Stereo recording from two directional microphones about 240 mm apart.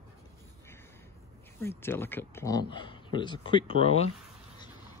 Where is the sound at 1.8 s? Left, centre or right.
Centre; by 4.1 s left.